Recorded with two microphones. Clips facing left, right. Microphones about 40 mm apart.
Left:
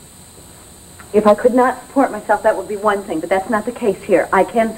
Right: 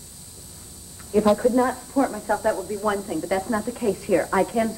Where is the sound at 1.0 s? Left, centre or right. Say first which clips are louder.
Left 7 dB; left.